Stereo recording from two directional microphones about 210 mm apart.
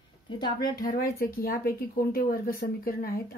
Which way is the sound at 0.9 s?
45° left (ahead or behind).